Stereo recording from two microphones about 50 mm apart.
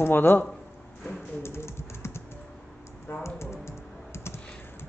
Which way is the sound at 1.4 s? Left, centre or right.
Left.